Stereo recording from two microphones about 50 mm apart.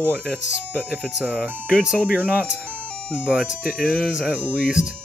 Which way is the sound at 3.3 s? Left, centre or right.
Centre.